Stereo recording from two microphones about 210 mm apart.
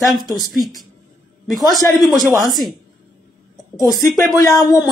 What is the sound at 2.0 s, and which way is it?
Speech, centre (ahead or behind).